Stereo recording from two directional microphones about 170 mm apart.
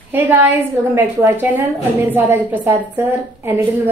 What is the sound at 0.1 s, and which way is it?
A woman's voice, 10° right (ahead or behind).